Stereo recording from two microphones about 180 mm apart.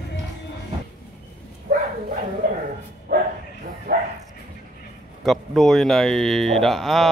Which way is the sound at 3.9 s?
60° right (ahead or behind).